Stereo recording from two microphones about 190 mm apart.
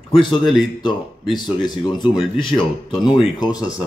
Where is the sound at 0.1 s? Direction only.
25° left (ahead or behind).